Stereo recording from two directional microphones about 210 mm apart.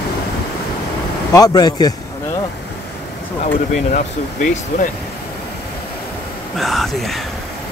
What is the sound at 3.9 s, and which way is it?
Speech, 40° left (ahead or behind).